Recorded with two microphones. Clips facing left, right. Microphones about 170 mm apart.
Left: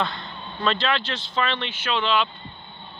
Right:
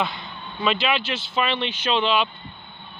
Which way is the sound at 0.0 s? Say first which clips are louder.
Right 1 dB; 5° right (ahead or behind).